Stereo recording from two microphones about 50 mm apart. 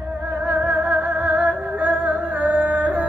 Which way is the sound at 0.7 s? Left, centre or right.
Right.